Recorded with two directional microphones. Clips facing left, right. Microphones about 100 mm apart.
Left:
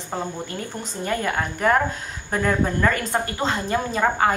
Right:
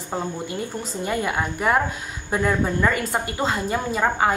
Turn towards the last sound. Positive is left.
turn(degrees=-5)  # may be behind; listen again after turning